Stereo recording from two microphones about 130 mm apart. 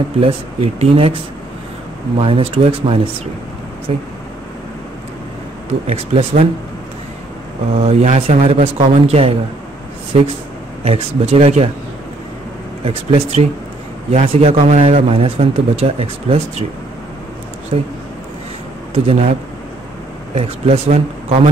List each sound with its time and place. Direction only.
0.2 s a man's voice: 45° right (ahead or behind)
5.7 s a man's voice: 50° right (ahead or behind)
7.8 s a man's voice: 50° right (ahead or behind)
10.8 s a man's voice: 50° right (ahead or behind)
12.8 s a man's voice: 50° right (ahead or behind)
17.7 s a man's voice: 55° right (ahead or behind)
19.0 s a man's voice: 50° right (ahead or behind)
20.3 s a man's voice: 55° right (ahead or behind)